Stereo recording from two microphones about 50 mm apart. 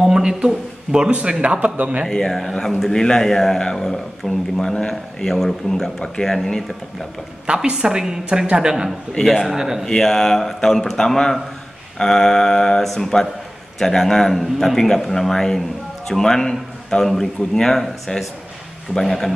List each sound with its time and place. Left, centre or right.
0.0 s a sound: centre
0.9 s speech: centre
2.0 s speech: centre
7.4 s a woman's voice: centre
9.2 s a man's voice: centre
9.8 s a man's voice: centre